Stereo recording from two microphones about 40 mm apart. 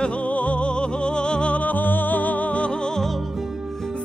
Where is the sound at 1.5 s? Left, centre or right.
Left.